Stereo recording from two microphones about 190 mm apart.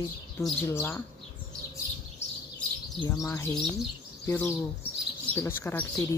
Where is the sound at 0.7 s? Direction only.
10° left (ahead or behind).